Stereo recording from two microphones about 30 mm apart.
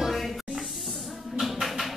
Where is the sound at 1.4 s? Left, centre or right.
Centre.